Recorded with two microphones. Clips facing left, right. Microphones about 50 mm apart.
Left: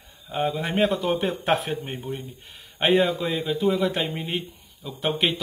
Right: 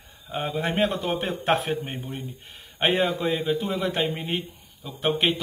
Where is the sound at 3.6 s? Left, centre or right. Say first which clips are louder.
Left 3 dB; centre.